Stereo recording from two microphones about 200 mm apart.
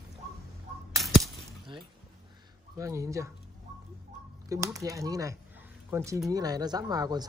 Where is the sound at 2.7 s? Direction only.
15° right (ahead or behind).